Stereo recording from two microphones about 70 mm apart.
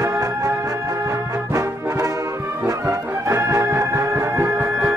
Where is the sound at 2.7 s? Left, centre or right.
Right.